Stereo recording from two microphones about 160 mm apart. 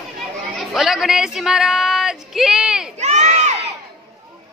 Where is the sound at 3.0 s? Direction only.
45° right (ahead or behind).